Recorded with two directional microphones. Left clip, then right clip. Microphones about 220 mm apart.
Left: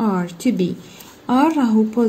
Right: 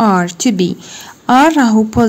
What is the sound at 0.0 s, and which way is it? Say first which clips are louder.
A woman's voice: right 9 dB; 30° right (ahead or behind).